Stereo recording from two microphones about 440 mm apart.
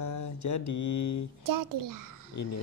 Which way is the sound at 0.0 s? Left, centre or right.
Left.